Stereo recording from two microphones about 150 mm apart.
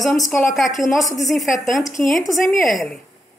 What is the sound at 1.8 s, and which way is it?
Speech, 20° left (ahead or behind).